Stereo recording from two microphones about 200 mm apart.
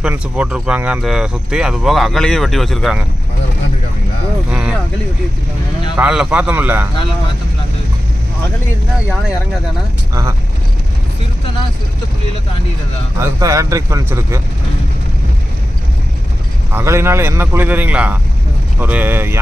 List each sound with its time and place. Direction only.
0.0 s speech: 5° right (ahead or behind)
4.5 s speech: 5° right (ahead or behind)
5.9 s a man's voice: 5° right (ahead or behind)
13.2 s a man's voice: 15° right (ahead or behind)
16.7 s a man's voice: 15° right (ahead or behind)